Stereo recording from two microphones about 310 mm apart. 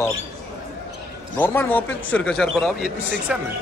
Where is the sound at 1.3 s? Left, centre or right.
Centre.